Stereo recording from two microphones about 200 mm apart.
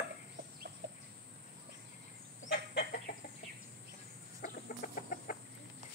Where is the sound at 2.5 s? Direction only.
55° left (ahead or behind).